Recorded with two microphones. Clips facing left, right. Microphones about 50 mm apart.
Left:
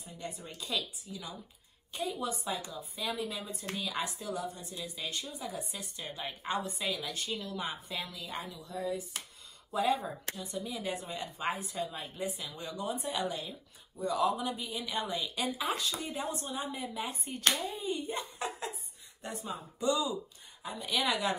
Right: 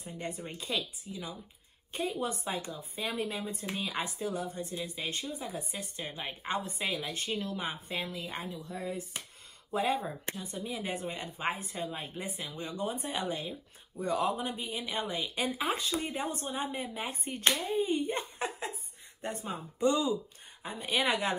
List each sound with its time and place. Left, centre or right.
0.0 s a woman's voice: right